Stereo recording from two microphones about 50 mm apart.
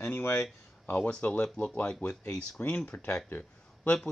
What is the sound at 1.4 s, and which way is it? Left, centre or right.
Speech, centre.